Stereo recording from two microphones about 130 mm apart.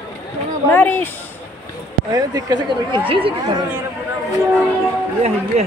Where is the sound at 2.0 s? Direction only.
30° right (ahead or behind).